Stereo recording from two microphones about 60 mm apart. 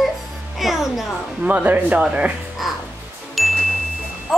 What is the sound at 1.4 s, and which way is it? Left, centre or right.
Speech, right.